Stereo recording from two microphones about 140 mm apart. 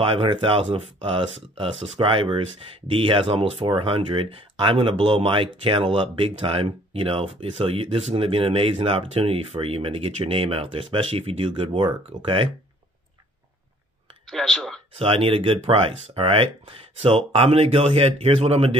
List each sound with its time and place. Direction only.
0.0 s speech: 40° right (ahead or behind)
14.3 s speech: 5° left (ahead or behind)
15.0 s speech: 40° right (ahead or behind)